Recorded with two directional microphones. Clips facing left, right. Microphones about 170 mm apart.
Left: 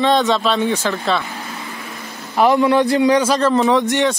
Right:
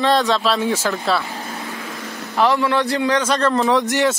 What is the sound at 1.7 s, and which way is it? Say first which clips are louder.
Vehicle: right 2 dB; 90° right.